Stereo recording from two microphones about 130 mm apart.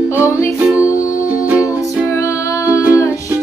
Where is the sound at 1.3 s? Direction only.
10° right (ahead or behind).